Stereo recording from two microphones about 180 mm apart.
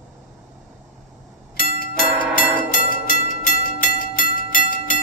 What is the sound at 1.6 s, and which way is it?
Music, 55° left (ahead or behind).